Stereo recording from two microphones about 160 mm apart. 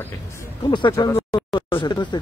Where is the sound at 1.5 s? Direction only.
30° left (ahead or behind).